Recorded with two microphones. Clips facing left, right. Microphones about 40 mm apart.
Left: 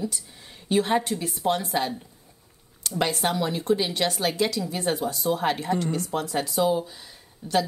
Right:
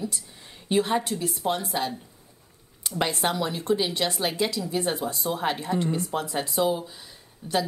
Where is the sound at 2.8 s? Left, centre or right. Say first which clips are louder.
Left 1 dB; centre.